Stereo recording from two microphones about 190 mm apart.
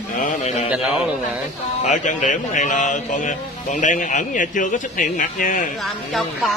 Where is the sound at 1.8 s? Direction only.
40° left (ahead or behind).